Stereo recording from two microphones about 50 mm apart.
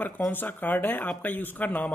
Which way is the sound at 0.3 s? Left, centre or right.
Left.